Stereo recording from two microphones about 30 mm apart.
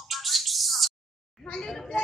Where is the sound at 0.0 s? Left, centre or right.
Centre.